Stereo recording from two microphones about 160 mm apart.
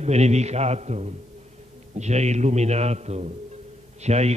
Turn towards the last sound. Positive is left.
turn(degrees=-45)  # may be behind; listen again after turning